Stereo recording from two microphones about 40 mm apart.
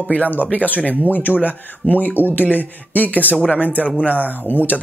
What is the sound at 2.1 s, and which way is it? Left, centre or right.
Speech, left.